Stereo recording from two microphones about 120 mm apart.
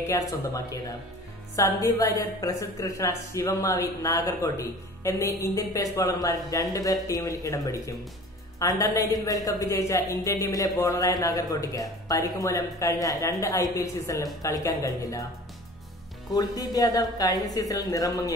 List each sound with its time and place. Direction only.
0.0 s speech: 25° left (ahead or behind)
16.3 s speech: 30° left (ahead or behind)